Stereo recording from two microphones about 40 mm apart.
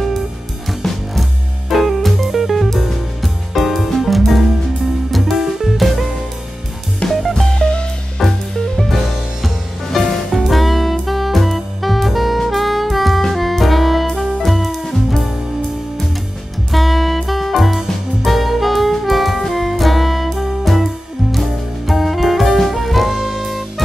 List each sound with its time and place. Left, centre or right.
0.7 s music: centre
7.1 s music: centre
7.5 s music: left
8.2 s music: centre
9.9 s music: centre
10.4 s saxophone: centre
13.3 s music: centre
16.7 s music: centre